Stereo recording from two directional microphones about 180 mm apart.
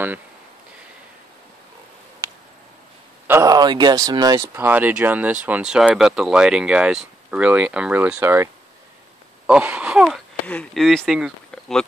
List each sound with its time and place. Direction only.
3.3 s speech: 20° right (ahead or behind)
4.6 s speech: 10° right (ahead or behind)
9.5 s speech: 5° right (ahead or behind)